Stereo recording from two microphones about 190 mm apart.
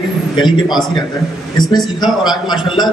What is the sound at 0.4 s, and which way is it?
A man's voice, 25° left (ahead or behind).